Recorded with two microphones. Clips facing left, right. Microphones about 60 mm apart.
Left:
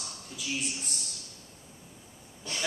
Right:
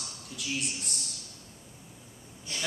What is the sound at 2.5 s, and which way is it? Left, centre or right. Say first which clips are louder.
Wheeze: left 2 dB; left.